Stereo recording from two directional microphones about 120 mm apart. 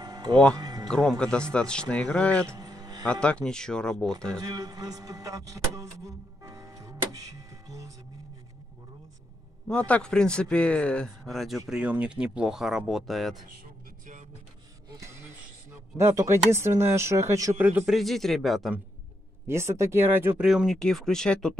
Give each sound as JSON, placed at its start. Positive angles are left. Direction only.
{"t": 0.0, "sound": "music", "side_deg": -35}
{"t": 0.8, "sound": "a man's voice", "side_deg": 5}
{"t": 2.5, "sound": "a sound", "side_deg": -30}
{"t": 3.1, "sound": "speech", "side_deg": 10}
{"t": 4.4, "sound": "speech", "side_deg": -30}
{"t": 9.7, "sound": "a man's voice", "side_deg": 10}
{"t": 14.9, "sound": "a sound", "side_deg": -25}
{"t": 16.0, "sound": "speech", "side_deg": -20}
{"t": 17.8, "sound": "speech", "side_deg": 0}
{"t": 19.4, "sound": "speech", "side_deg": -20}
{"t": 20.3, "sound": "speech", "side_deg": -5}